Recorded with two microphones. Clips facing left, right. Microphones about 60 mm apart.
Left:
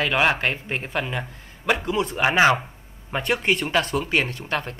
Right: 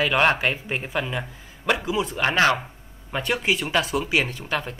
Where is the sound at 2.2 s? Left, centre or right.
Centre.